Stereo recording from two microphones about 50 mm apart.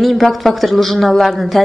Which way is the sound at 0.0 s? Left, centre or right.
Centre.